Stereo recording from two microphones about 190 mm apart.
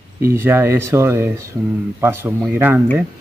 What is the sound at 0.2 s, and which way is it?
Speech, 10° right (ahead or behind).